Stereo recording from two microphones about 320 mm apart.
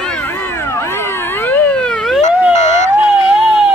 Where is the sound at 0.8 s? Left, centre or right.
Centre.